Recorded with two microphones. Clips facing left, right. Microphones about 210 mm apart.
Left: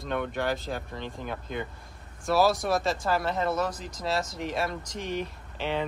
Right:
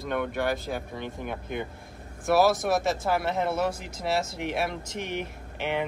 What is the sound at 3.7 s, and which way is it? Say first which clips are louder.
Speech: right 2 dB; 25° right (ahead or behind).